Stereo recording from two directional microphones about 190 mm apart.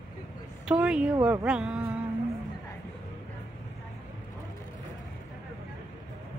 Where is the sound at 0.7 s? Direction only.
5° right (ahead or behind).